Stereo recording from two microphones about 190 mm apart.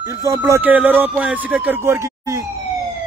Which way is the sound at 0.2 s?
15° right (ahead or behind).